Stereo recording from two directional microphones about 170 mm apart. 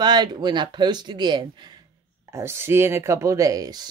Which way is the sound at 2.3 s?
15° right (ahead or behind).